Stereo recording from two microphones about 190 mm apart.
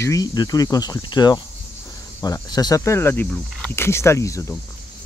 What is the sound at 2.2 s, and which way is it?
Cricket, 20° left (ahead or behind).